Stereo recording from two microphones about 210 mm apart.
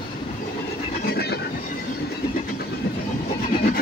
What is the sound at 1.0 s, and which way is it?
Train, 50° left (ahead or behind).